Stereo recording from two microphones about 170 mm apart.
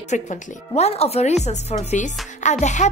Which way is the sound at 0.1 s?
40° left (ahead or behind).